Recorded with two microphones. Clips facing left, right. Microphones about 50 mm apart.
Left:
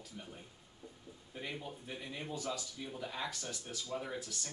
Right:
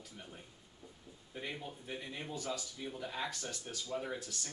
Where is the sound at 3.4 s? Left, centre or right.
Right.